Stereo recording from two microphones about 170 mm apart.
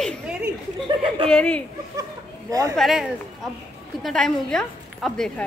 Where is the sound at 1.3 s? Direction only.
5° left (ahead or behind).